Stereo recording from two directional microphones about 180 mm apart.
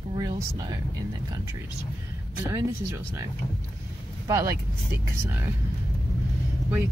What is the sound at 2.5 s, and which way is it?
Speech, 15° right (ahead or behind).